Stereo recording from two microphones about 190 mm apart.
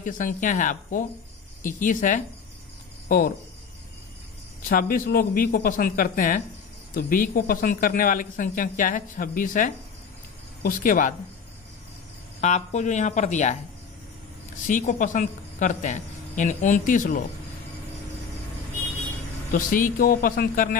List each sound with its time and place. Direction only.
0.0 s speech: 45° left (ahead or behind)
4.6 s speech: 50° left (ahead or behind)
12.4 s speech: 35° left (ahead or behind)
14.7 s speech: 45° left (ahead or behind)
19.5 s speech: 50° left (ahead or behind)